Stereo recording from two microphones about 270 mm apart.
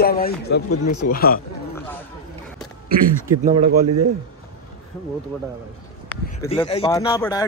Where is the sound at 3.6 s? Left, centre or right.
Right.